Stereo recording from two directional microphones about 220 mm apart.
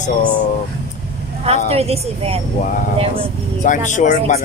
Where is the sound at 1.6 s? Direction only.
30° right (ahead or behind).